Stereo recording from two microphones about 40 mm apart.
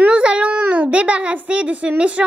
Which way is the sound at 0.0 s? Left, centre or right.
Right.